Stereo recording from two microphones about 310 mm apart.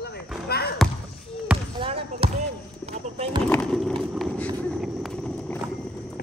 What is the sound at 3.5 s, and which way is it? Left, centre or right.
Speech, centre.